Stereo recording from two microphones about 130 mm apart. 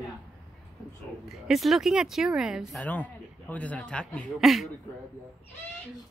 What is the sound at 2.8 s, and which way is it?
Speech, 10° left (ahead or behind).